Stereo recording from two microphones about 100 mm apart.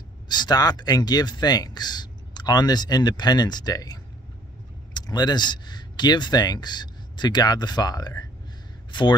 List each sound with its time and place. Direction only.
0.3 s speech: 45° left (ahead or behind)